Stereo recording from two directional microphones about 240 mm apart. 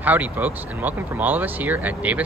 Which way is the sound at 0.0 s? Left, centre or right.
Centre.